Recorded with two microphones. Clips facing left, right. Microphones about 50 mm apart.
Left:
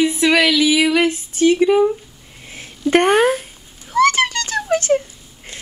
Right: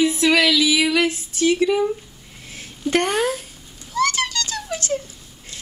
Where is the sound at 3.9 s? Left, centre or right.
Left.